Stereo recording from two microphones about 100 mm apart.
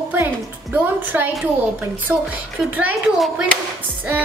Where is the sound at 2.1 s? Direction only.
20° right (ahead or behind).